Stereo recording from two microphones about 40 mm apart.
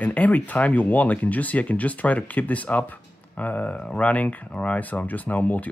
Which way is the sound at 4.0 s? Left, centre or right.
Left.